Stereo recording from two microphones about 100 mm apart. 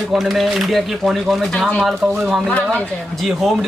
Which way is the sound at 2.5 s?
15° left (ahead or behind).